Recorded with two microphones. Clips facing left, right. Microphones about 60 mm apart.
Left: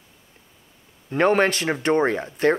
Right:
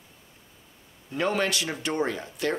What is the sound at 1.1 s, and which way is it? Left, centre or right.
Speech, left.